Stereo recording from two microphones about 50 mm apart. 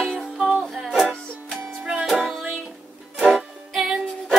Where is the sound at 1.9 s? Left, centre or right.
Centre.